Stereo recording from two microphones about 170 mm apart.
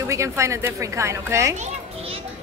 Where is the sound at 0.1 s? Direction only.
15° right (ahead or behind).